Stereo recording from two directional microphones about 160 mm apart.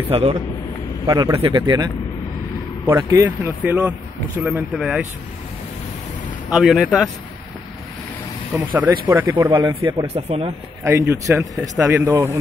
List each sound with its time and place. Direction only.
0.1 s speech: 40° right (ahead or behind)
1.0 s speech: 25° right (ahead or behind)
2.9 s speech: 15° right (ahead or behind)
6.5 s speech: centre (ahead or behind)
8.5 s speech: 10° right (ahead or behind)
10.0 s speech: 40° right (ahead or behind)
10.8 s speech: 15° right (ahead or behind)